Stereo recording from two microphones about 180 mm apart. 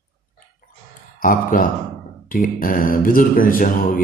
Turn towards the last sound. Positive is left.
turn(degrees=50)  # may be behind; listen again after turning